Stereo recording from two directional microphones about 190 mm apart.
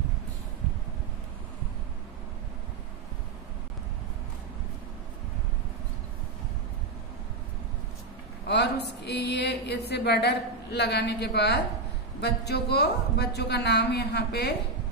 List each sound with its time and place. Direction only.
8.5 s a woman's voice: 60° left (ahead or behind)